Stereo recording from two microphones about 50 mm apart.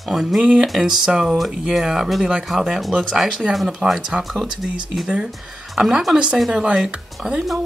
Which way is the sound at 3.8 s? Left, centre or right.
Centre.